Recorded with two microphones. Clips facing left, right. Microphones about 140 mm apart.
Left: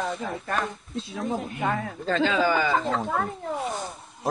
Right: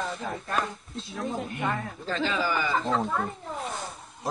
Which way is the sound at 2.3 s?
80° left.